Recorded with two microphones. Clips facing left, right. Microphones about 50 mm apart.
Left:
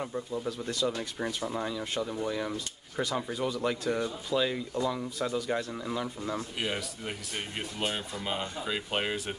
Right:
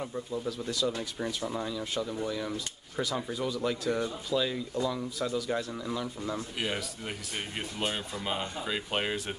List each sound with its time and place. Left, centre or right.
0.0 s speech: centre
0.5 s speech: left
2.5 s speech: left
3.3 s speech: left
6.6 s speech: centre